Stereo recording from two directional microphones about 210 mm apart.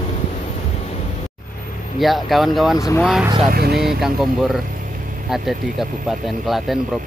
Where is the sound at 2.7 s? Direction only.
15° left (ahead or behind).